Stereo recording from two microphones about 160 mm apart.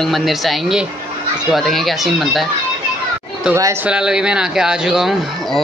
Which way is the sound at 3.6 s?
15° right (ahead or behind).